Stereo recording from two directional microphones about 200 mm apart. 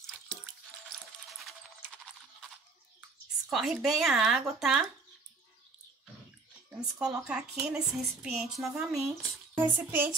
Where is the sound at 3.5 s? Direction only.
Centre (ahead or behind).